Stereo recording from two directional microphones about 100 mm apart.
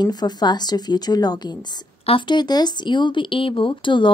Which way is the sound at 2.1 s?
55° left (ahead or behind).